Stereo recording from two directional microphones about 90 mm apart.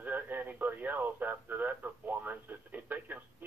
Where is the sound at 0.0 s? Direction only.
20° right (ahead or behind).